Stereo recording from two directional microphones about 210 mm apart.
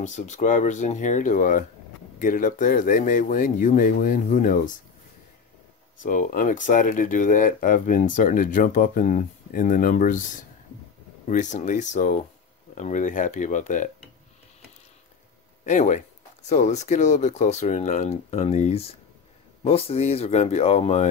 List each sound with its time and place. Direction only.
0.0 s speech: 35° left (ahead or behind)
5.9 s speech: 40° left (ahead or behind)
11.2 s speech: 35° left (ahead or behind)
15.6 s speech: 35° left (ahead or behind)